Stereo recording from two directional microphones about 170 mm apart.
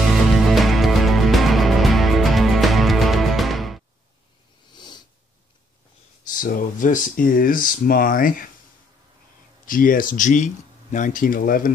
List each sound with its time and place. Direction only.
0.1 s music: centre (ahead or behind)
4.7 s cat: 25° left (ahead or behind)
6.2 s speech: 55° left (ahead or behind)
9.7 s speech: 55° left (ahead or behind)